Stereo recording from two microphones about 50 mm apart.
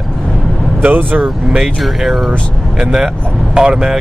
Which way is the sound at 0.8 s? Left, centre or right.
Right.